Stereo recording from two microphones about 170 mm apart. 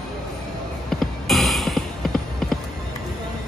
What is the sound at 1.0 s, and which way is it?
Music, centre (ahead or behind).